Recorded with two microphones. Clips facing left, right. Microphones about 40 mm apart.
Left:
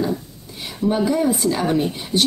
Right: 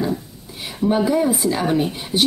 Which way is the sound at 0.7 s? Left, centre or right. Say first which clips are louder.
Right 1 dB; centre.